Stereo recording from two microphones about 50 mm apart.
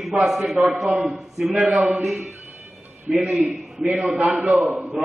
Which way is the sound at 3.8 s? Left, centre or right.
Right.